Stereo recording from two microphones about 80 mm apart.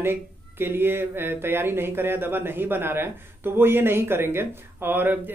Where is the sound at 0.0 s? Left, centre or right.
Right.